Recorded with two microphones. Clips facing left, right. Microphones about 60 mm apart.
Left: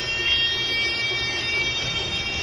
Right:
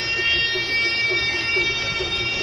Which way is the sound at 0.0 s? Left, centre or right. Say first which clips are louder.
Right 3 dB; right.